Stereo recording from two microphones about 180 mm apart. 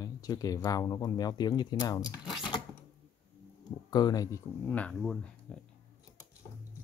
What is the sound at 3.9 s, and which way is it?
Speech, 20° left (ahead or behind).